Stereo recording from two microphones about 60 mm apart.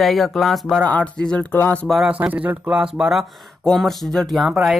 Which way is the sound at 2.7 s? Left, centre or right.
Centre.